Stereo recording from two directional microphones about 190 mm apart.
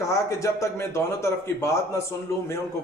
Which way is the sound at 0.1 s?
15° left (ahead or behind).